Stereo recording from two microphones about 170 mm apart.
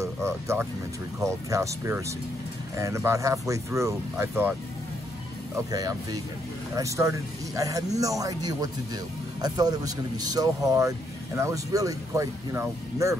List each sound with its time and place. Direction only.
0.0 s speech: 15° right (ahead or behind)
5.7 s speech: 20° right (ahead or behind)